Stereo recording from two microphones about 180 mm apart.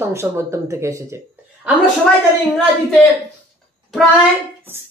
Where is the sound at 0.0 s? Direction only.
15° right (ahead or behind).